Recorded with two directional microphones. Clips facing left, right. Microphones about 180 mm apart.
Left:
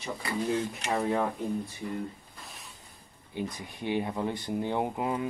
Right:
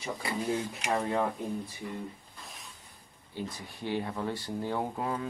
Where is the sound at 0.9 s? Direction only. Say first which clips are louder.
Left 1 dB; 5° left (ahead or behind).